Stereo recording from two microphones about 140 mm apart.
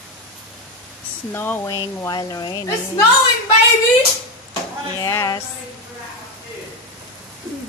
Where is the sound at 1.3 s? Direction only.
15° left (ahead or behind).